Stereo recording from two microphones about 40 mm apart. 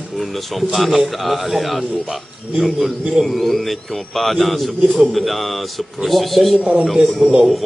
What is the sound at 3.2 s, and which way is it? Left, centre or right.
A man's voice, centre.